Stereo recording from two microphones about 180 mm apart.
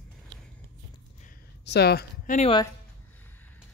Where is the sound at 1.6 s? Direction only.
65° left (ahead or behind).